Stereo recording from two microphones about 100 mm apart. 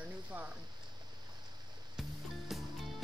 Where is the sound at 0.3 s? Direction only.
15° right (ahead or behind).